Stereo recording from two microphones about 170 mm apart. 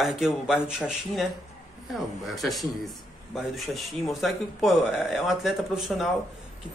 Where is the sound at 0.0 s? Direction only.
5° right (ahead or behind).